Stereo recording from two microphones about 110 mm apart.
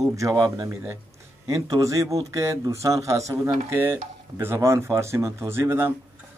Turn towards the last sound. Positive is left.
turn(degrees=-20)  # may be behind; listen again after turning